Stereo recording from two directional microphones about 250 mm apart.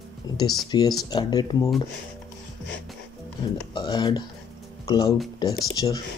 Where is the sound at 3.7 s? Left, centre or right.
Centre.